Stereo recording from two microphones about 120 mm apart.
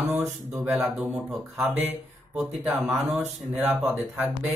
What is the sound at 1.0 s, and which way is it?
Speech, 25° right (ahead or behind).